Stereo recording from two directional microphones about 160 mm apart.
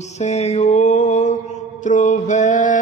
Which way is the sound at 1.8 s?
50° left (ahead or behind).